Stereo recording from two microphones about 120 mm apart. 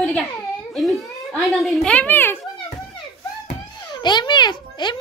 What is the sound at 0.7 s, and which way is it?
Speech, centre (ahead or behind).